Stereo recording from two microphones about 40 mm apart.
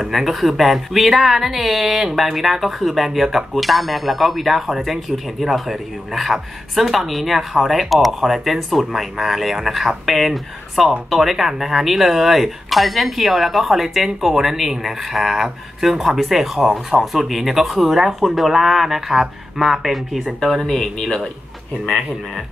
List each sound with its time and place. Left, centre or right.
0.0 s speech: centre
8.1 s speech: centre
8.5 s speech: centre
20.3 s speech: centre